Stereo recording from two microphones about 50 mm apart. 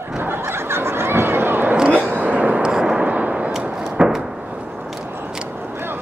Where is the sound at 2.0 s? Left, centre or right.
Right.